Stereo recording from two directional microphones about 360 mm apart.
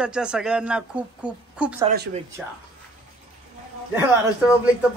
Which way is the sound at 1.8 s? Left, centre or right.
Right.